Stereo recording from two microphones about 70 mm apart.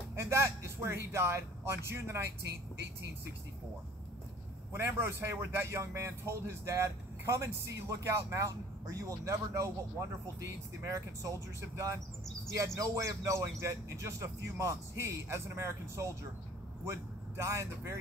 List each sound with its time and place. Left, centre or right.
0.1 s speech: right
4.7 s a man's voice: right